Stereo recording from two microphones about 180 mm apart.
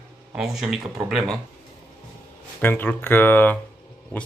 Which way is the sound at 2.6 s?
10° left (ahead or behind).